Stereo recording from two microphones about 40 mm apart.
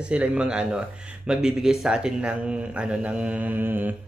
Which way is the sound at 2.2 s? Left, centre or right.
Right.